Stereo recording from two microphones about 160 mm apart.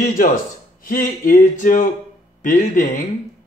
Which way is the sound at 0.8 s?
60° left (ahead or behind).